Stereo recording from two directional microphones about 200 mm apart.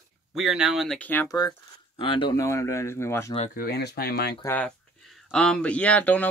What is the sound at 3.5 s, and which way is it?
Speech, 50° left (ahead or behind).